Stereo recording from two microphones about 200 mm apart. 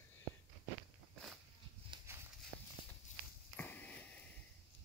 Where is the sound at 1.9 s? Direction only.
25° right (ahead or behind).